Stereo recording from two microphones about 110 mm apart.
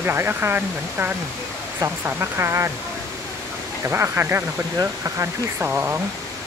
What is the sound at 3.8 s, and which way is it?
Speech, 20° right (ahead or behind).